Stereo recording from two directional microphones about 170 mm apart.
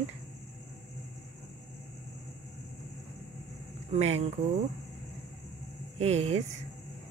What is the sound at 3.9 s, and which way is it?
Speech, 40° right (ahead or behind).